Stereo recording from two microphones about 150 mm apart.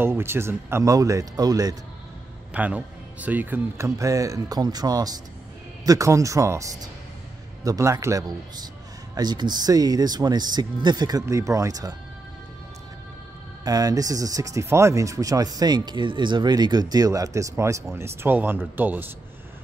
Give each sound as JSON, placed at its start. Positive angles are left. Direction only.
{"t": 0.0, "sound": "speech", "side_deg": -15}
{"t": 2.5, "sound": "speech", "side_deg": -10}
{"t": 13.7, "sound": "speech", "side_deg": -25}